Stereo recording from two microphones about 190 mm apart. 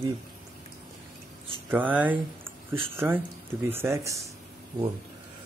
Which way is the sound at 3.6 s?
10° right (ahead or behind).